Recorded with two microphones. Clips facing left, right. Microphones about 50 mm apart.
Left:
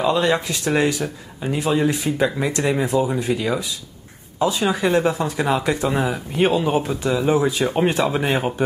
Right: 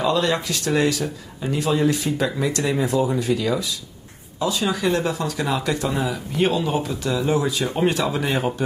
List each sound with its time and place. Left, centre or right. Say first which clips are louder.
0.0 s speech: left 2 dB; left